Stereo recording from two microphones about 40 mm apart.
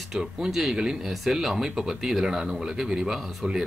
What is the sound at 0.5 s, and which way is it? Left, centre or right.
Speech, centre.